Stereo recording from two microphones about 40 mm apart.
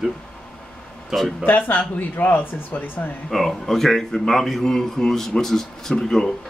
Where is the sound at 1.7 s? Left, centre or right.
Left.